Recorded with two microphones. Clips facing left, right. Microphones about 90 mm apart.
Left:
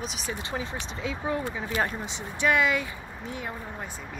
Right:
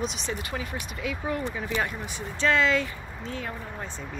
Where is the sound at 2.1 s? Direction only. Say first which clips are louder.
Even; 15° left (ahead or behind).